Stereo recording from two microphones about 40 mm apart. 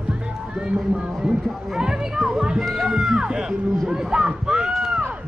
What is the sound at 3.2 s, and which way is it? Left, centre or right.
Music, centre.